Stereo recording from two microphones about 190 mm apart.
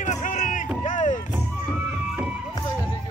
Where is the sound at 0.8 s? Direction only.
40° left (ahead or behind).